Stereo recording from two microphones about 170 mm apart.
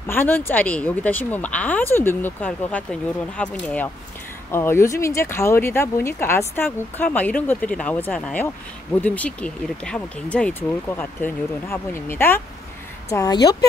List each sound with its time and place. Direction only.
0.0 s speech: 10° left (ahead or behind)